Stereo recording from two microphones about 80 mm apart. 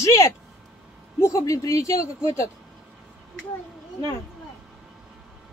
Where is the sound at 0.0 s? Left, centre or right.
Left.